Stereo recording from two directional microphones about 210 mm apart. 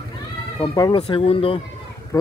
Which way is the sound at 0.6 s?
20° left (ahead or behind).